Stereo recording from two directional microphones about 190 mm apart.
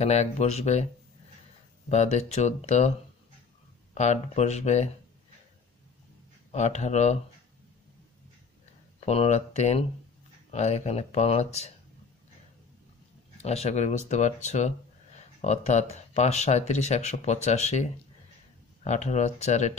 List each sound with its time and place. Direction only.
0.0 s speech: 35° left (ahead or behind)
1.9 s speech: 35° left (ahead or behind)
3.9 s speech: 35° left (ahead or behind)
6.5 s speech: 35° left (ahead or behind)
9.0 s speech: 35° left (ahead or behind)
13.4 s speech: 35° left (ahead or behind)
18.9 s speech: 35° left (ahead or behind)